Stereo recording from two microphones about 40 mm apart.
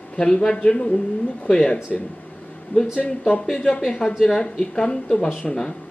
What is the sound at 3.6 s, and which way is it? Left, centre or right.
A woman's voice, left.